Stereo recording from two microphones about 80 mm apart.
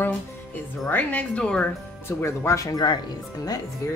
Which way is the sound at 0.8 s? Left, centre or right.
Left.